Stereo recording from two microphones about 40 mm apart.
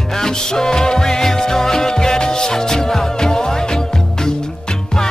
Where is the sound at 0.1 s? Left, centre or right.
Centre.